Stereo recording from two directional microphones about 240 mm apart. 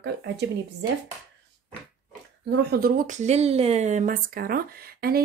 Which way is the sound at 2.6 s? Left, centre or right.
Right.